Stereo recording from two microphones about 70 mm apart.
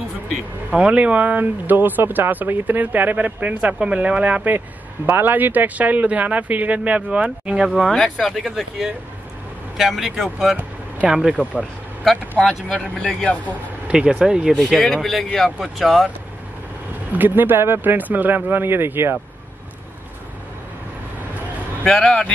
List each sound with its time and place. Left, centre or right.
0.7 s speech: centre
12.4 s speech: centre
13.8 s speech: centre
14.7 s speech: centre
17.1 s speech: right
21.9 s speech: centre